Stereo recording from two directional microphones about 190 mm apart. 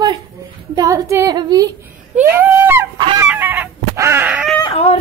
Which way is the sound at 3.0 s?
25° right (ahead or behind).